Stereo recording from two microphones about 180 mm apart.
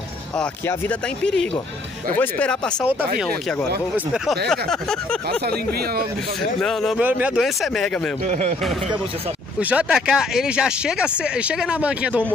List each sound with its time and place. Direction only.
0.4 s speech: 5° left (ahead or behind)
3.9 s speech: 5° right (ahead or behind)
5.7 s speech: 60° right (ahead or behind)
6.6 s speech: centre (ahead or behind)
8.3 s speech: 40° right (ahead or behind)
9.6 s speech: 10° right (ahead or behind)